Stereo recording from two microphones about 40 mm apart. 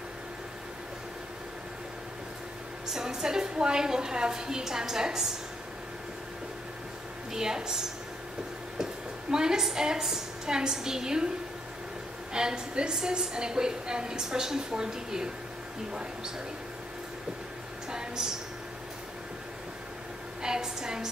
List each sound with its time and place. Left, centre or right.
2.9 s a woman's voice: centre
7.3 s a woman's voice: centre
9.3 s a woman's voice: centre
12.3 s a woman's voice: centre
17.9 s a sound: centre
20.4 s a sound: centre